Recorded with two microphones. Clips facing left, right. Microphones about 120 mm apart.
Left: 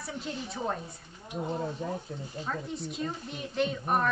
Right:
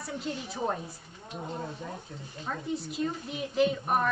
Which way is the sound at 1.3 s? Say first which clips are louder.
Left 4 dB; 15° left (ahead or behind).